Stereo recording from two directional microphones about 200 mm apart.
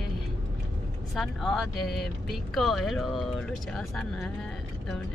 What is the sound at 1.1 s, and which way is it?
Speech, centre (ahead or behind).